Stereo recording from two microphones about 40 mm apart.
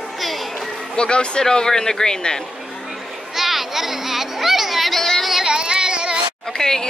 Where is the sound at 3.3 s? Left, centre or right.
Centre.